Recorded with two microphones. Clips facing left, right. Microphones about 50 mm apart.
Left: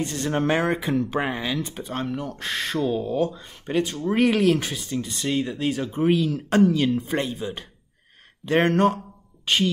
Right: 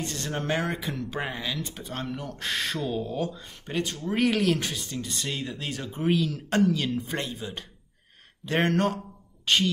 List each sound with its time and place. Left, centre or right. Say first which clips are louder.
0.0 s speech: left 7 dB; centre